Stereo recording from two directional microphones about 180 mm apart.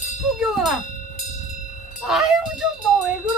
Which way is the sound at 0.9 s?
45° left (ahead or behind).